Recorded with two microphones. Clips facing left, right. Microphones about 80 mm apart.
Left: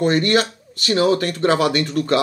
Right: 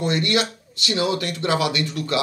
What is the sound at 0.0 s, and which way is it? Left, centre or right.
Speech, left.